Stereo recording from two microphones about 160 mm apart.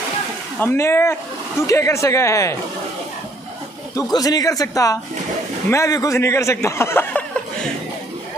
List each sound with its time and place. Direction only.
0.6 s a man's voice: 15° left (ahead or behind)
3.9 s a man's voice: 25° left (ahead or behind)